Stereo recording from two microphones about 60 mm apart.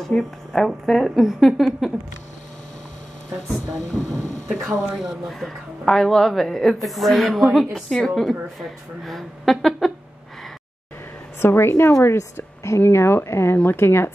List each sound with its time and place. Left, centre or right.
0.0 s a woman's voice: centre
4.1 s speech: right
4.6 s a woman's voice: centre
11.4 s speech: left
12.2 s a woman's voice: left
12.8 s a woman's voice: left